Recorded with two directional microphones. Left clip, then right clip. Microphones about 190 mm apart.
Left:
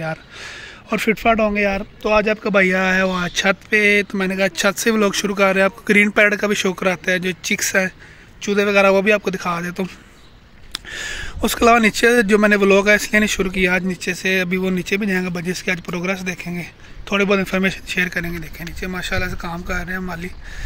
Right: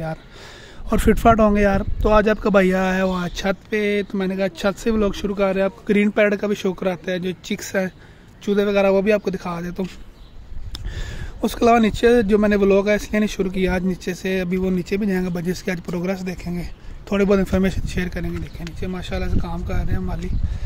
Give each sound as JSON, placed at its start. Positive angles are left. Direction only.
{"t": 0.0, "sound": "speech", "side_deg": -10}
{"t": 1.0, "sound": "speech", "side_deg": -35}
{"t": 17.1, "sound": "speech", "side_deg": -25}